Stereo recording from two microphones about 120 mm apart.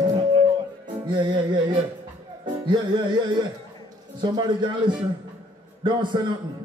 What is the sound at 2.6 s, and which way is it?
A man's voice, 40° right (ahead or behind).